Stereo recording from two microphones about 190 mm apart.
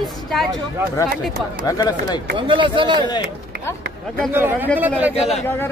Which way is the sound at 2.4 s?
25° right (ahead or behind).